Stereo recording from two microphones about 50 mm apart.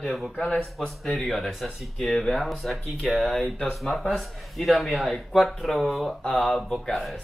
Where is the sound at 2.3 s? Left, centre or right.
Centre.